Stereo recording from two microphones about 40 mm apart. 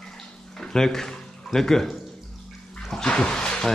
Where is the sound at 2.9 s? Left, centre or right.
Left.